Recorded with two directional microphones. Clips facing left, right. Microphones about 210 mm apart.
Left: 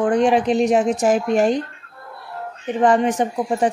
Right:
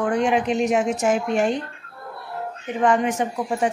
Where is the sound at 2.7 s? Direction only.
35° left (ahead or behind).